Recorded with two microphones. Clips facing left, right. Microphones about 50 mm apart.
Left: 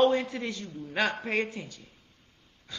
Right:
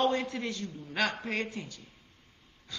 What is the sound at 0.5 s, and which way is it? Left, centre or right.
Speech, left.